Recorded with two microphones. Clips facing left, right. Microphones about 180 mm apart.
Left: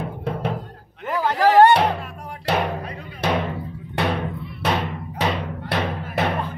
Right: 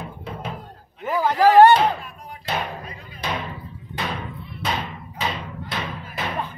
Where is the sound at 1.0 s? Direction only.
10° right (ahead or behind).